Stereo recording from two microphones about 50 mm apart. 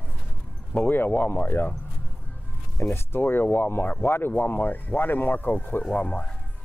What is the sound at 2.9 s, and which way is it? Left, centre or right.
Speech, left.